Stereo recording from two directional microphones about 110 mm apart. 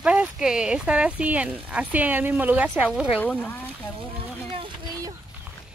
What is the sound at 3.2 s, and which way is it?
Speech, 15° left (ahead or behind).